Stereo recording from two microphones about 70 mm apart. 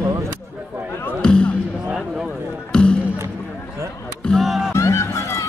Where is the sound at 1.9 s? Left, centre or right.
Centre.